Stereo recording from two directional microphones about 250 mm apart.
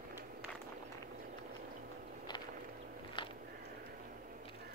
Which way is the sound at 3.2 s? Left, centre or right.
Centre.